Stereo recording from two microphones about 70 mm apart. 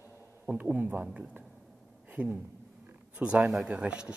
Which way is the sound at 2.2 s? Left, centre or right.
Centre.